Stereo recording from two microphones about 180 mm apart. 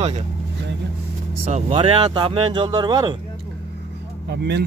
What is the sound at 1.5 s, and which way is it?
Speech, 35° right (ahead or behind).